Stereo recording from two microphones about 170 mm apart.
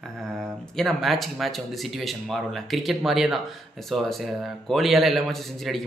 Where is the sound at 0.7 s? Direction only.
Centre (ahead or behind).